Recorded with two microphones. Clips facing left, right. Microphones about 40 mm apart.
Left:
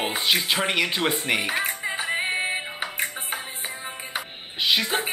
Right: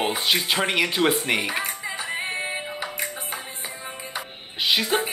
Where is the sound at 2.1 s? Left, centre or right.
Left.